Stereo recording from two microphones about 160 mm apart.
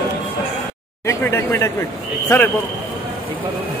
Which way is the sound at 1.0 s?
15° left (ahead or behind).